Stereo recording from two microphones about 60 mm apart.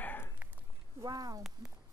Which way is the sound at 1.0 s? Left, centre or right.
Right.